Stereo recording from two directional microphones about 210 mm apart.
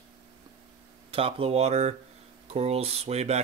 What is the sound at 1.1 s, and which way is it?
Speech, 25° right (ahead or behind).